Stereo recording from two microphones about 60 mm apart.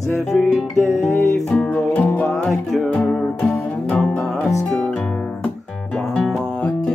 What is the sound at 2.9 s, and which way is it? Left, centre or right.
Music, centre.